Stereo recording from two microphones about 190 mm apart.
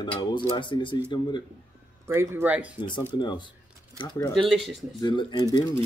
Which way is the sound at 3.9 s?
20° left (ahead or behind).